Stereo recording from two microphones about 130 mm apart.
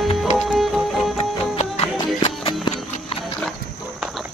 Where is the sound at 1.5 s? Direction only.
50° left (ahead or behind).